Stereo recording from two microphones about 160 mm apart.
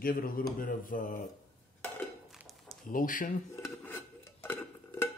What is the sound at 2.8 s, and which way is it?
Speech, 60° left (ahead or behind).